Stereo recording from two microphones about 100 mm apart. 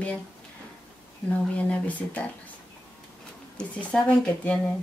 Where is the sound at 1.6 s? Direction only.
15° left (ahead or behind).